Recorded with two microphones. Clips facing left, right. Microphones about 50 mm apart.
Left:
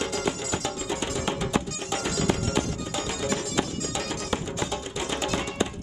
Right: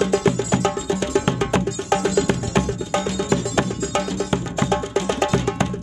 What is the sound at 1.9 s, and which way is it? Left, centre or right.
Music, right.